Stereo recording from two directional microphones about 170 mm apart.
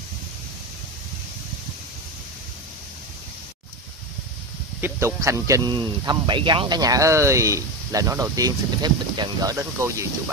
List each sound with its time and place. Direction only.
4.8 s speech: 15° right (ahead or behind)